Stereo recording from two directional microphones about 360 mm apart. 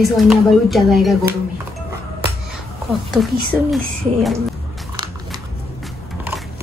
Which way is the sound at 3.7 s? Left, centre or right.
Centre.